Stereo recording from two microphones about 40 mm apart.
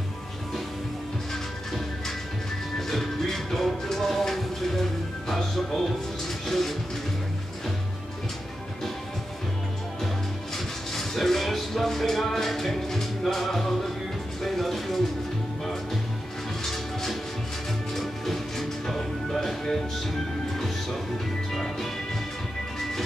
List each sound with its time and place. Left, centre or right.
1.3 s music: centre
6.4 s music: centre
11.0 s music: centre